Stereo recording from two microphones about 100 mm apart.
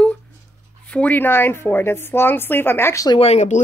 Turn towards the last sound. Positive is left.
turn(degrees=90)